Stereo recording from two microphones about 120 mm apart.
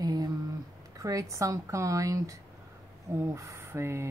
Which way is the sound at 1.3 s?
25° right (ahead or behind).